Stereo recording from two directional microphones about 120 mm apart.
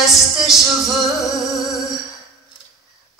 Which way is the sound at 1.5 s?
5° right (ahead or behind).